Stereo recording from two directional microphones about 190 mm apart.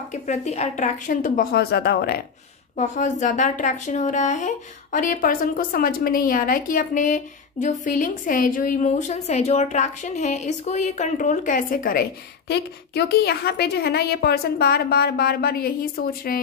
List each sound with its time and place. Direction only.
0.1 s a woman's voice: 35° left (ahead or behind); by 2.2 s 55° left (ahead or behind)
2.8 s a woman's voice: 40° left (ahead or behind)